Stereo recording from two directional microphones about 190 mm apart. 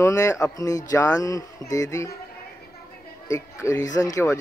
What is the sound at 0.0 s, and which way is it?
Speech, 15° left (ahead or behind).